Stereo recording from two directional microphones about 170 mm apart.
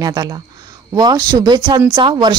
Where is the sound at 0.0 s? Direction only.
20° right (ahead or behind).